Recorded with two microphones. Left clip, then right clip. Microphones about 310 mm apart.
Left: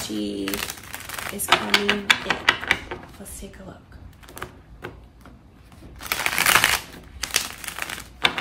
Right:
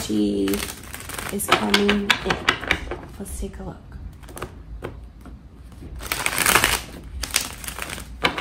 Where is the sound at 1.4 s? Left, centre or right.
Centre.